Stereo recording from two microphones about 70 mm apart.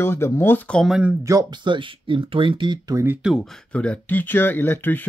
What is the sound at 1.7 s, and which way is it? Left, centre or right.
Speech, right.